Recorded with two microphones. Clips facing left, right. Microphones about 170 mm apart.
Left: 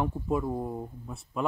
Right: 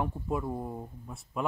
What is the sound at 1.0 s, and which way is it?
Speech, 5° right (ahead or behind).